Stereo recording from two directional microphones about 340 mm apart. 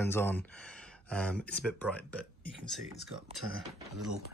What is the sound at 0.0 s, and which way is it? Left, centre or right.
Speech, centre.